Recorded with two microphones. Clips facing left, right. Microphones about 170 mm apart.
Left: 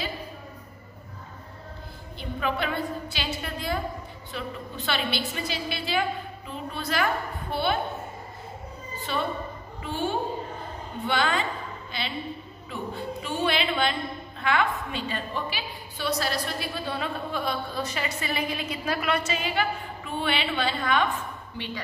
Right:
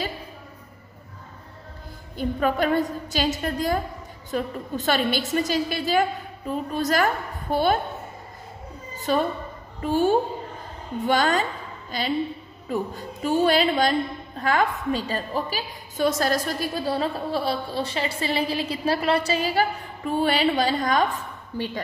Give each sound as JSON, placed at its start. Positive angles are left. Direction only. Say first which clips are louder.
{"t": 2.1, "sound": "a woman's voice", "louder": "right 6 dB", "side_deg": -45}
{"t": 8.9, "sound": "a sound", "louder": "right 7 dB", "side_deg": -40}
{"t": 9.8, "sound": "a woman's voice", "louder": "right 8 dB", "side_deg": -40}